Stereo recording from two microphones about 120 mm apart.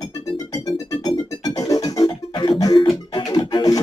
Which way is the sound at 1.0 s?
30° left (ahead or behind).